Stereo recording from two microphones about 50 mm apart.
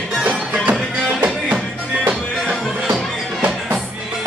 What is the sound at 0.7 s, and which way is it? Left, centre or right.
Music, right.